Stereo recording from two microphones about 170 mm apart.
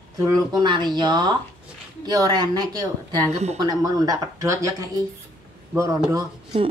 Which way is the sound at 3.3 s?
40° right (ahead or behind).